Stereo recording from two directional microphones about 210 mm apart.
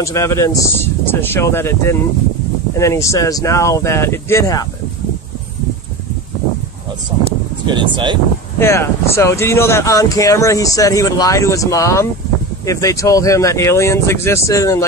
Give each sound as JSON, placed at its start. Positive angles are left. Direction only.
{"t": 0.0, "sound": "speech", "side_deg": 15}
{"t": 7.6, "sound": "speech", "side_deg": -20}
{"t": 8.5, "sound": "speech", "side_deg": 10}